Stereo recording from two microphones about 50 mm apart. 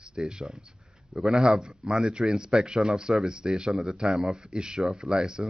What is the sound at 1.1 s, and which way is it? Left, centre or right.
Speech, centre.